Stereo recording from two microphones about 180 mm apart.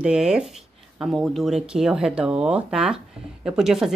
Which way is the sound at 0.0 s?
5° right (ahead or behind).